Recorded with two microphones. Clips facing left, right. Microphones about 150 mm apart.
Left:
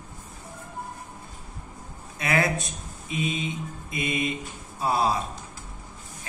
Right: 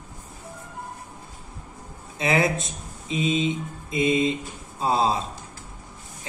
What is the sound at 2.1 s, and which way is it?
Speech, 25° right (ahead or behind).